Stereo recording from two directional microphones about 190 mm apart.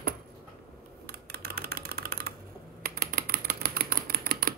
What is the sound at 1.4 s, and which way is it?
Typing, 50° right (ahead or behind).